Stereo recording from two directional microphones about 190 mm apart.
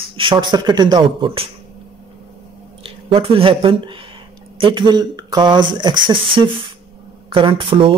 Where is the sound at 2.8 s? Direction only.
30° right (ahead or behind).